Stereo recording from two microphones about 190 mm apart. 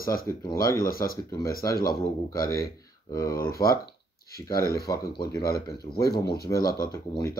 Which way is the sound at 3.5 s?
15° left (ahead or behind).